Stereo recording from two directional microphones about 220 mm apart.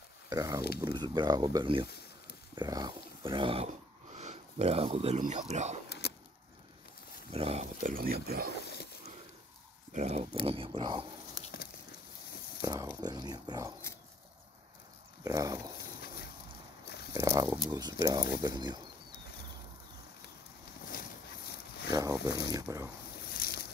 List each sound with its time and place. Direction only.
0.3 s speech: 15° right (ahead or behind)
1.9 s a sound: 45° left (ahead or behind)
2.5 s speech: 20° right (ahead or behind)
7.3 s speech: 30° right (ahead or behind)
9.9 s speech: 30° right (ahead or behind)
12.6 s speech: 15° right (ahead or behind)
15.2 s speech: 15° right (ahead or behind)
17.1 s speech: 15° right (ahead or behind)
21.9 s speech: 15° right (ahead or behind)
23.4 s boat: 45° left (ahead or behind)